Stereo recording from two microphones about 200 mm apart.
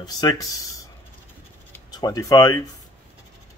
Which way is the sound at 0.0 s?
15° left (ahead or behind).